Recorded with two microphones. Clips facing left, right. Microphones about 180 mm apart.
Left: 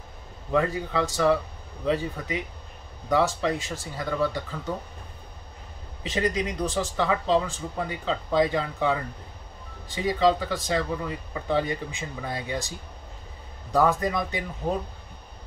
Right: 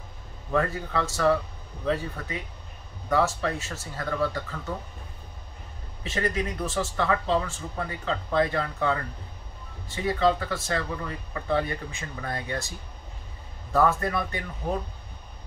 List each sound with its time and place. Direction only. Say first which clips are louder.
0.5 s speech: left 2 dB; 15° left (ahead or behind)
6.0 s speech: left 2 dB; 15° left (ahead or behind)